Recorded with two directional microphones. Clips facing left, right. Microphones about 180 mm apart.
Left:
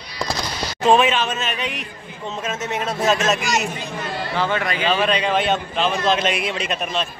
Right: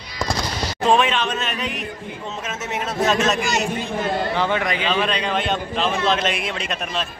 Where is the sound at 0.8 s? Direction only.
5° left (ahead or behind).